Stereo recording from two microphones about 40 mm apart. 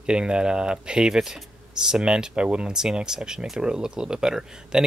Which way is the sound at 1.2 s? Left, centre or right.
Centre.